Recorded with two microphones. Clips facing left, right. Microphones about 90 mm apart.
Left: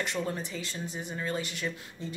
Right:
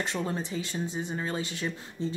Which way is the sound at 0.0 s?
25° right (ahead or behind).